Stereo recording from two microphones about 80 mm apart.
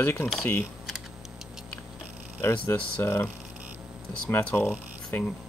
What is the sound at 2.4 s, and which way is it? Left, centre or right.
Speech, left.